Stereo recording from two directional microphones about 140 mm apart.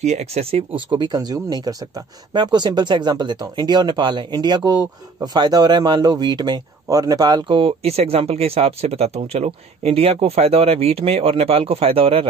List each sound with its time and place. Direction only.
0.0 s speech: 50° right (ahead or behind)